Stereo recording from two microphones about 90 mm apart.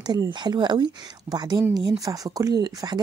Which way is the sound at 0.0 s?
50° right (ahead or behind).